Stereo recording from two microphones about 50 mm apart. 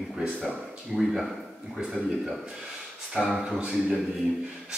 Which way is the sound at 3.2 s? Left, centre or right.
Centre.